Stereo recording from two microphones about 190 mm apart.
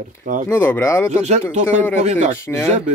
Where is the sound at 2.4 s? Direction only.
10° left (ahead or behind).